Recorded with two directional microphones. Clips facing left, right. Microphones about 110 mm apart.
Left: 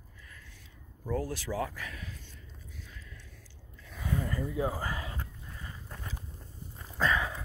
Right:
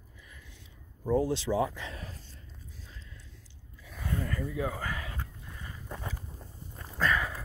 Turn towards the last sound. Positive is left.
turn(degrees=5)  # may be behind; listen again after turning